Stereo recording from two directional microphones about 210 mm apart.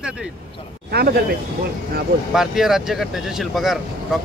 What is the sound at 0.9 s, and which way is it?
Speech, 50° right (ahead or behind).